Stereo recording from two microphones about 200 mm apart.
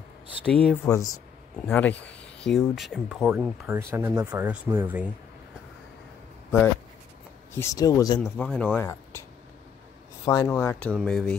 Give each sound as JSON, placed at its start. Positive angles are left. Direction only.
{"t": 0.5, "sound": "speech", "side_deg": 5}
{"t": 0.8, "sound": "speech", "side_deg": 15}
{"t": 7.5, "sound": "speech", "side_deg": 15}
{"t": 8.2, "sound": "speech", "side_deg": 5}
{"t": 10.2, "sound": "speech", "side_deg": 20}